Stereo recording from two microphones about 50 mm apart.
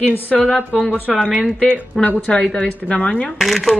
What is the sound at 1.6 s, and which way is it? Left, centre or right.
Speech, centre.